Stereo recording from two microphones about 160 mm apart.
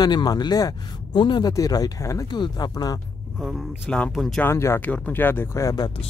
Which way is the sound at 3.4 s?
Centre (ahead or behind).